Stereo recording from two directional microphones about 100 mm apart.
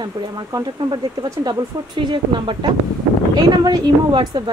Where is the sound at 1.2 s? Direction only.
45° right (ahead or behind).